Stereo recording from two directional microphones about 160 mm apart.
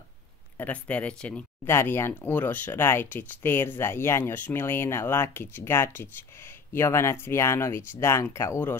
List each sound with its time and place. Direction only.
0.6 s speech: 10° left (ahead or behind)